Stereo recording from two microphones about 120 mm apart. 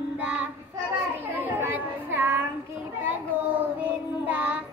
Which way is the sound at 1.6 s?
20° right (ahead or behind).